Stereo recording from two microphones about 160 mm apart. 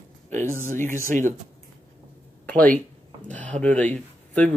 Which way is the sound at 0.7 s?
55° right (ahead or behind).